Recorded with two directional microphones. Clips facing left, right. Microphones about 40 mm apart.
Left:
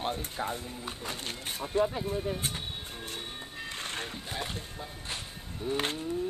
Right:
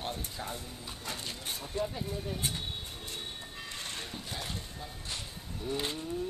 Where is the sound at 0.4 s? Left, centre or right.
Left.